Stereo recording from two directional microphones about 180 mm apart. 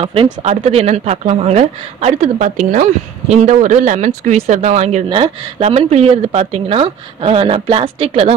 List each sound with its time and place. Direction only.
0.0 s speech: 35° right (ahead or behind)